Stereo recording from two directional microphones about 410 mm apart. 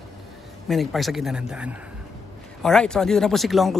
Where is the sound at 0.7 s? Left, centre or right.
Centre.